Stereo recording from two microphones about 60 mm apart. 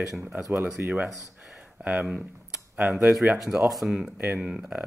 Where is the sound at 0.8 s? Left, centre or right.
Right.